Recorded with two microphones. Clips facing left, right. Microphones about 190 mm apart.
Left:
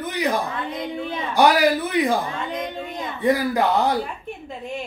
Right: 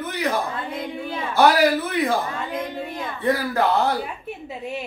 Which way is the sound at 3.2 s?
15° left (ahead or behind).